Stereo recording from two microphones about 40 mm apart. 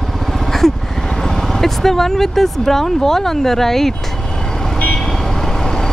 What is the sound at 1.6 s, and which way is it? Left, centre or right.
Speech, centre.